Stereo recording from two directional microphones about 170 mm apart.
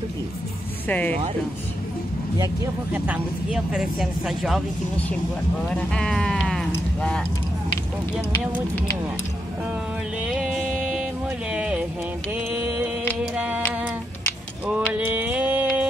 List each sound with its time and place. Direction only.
0.8 s speech: 10° left (ahead or behind)
2.3 s speech: 20° right (ahead or behind)
2.9 s speech: 5° right (ahead or behind)
6.7 s a sound: 5° left (ahead or behind)
10.2 s music: 5° right (ahead or behind)
12.4 s mantra: 10° right (ahead or behind)
15.0 s music: 10° right (ahead or behind)